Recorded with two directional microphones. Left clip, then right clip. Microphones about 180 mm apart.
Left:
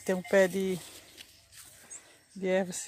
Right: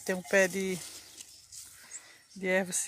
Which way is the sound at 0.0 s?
20° left (ahead or behind).